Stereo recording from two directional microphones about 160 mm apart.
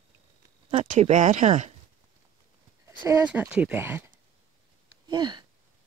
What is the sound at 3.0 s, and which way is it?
Speech, 10° right (ahead or behind).